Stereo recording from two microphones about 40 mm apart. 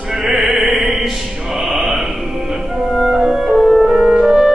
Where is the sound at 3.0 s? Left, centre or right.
Centre.